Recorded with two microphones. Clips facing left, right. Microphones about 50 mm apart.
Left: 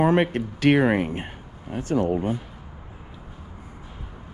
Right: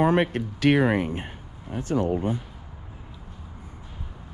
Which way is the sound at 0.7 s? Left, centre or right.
Left.